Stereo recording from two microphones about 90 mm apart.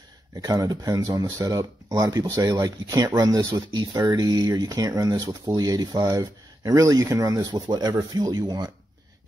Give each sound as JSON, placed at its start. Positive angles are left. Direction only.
{"t": 0.4, "sound": "speech", "side_deg": -40}